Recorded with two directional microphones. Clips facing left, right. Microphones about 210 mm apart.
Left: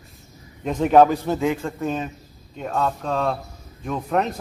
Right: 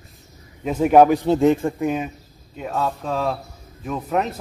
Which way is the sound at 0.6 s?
5° right (ahead or behind).